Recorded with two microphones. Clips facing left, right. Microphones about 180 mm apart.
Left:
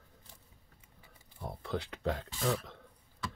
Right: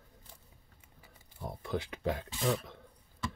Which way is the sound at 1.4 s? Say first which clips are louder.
Right 1 dB; 10° right (ahead or behind).